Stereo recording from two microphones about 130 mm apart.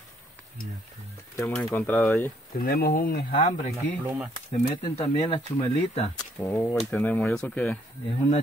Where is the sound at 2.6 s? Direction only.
90° left.